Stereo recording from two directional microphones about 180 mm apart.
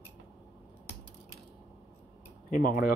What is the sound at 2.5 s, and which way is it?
Speech, 50° left (ahead or behind).